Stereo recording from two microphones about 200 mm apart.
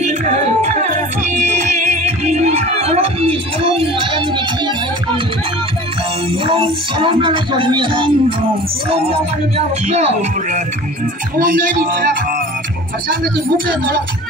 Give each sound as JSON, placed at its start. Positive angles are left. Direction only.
{"t": 0.0, "sound": "music", "side_deg": -35}
{"t": 6.4, "sound": "speech", "side_deg": -25}
{"t": 9.8, "sound": "speech", "side_deg": -35}
{"t": 11.3, "sound": "music", "side_deg": -45}